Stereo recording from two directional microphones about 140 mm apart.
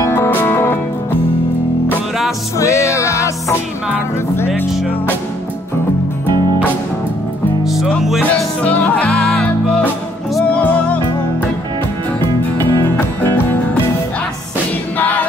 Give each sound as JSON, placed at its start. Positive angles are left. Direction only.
{"t": 0.0, "sound": "music", "side_deg": 15}
{"t": 2.6, "sound": "music", "side_deg": 20}
{"t": 7.6, "sound": "music", "side_deg": 0}
{"t": 8.4, "sound": "music", "side_deg": 10}
{"t": 12.8, "sound": "music", "side_deg": 15}
{"t": 15.0, "sound": "music", "side_deg": 10}